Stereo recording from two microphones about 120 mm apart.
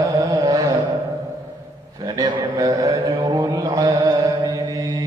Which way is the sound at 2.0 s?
30° right (ahead or behind).